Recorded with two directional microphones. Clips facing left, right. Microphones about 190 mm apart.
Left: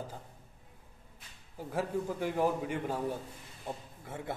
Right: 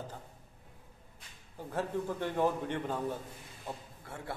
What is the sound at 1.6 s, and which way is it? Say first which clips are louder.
A man's voice: left 1 dB; 10° left (ahead or behind).